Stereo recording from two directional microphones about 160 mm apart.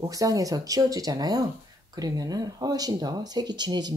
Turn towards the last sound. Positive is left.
turn(degrees=-25)  # may be behind; listen again after turning